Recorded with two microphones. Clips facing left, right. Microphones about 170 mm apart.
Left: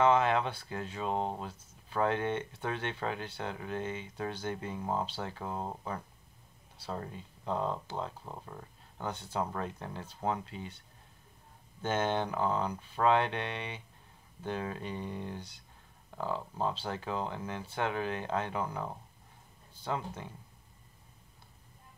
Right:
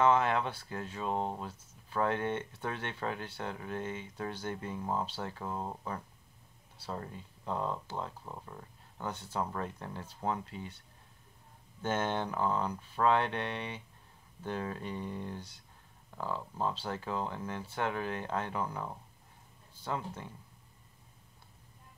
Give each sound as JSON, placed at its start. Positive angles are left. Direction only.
{"t": 0.0, "sound": "speech", "side_deg": 20}
{"t": 8.5, "sound": "a sound", "side_deg": 40}
{"t": 9.0, "sound": "speech", "side_deg": 20}
{"t": 11.8, "sound": "speech", "side_deg": 20}